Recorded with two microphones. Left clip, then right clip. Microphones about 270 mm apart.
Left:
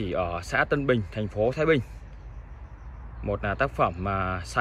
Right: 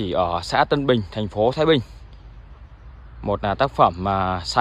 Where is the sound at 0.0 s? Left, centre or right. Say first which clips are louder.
Right 7 dB; centre.